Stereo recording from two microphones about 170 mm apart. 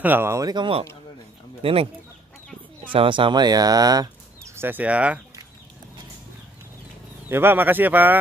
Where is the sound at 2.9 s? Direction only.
30° right (ahead or behind); by 5.1 s 10° right (ahead or behind).